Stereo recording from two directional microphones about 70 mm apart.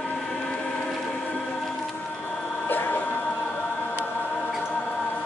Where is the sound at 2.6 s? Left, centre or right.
Left.